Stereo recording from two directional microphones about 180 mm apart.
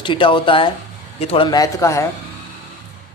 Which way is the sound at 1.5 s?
20° left (ahead or behind).